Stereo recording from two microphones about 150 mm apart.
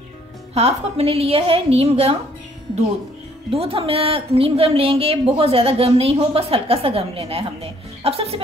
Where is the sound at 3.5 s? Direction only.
40° right (ahead or behind).